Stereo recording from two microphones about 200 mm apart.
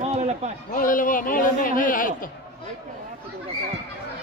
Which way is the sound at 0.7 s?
40° left (ahead or behind).